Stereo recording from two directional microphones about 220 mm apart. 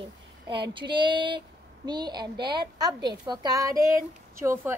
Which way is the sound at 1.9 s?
20° right (ahead or behind).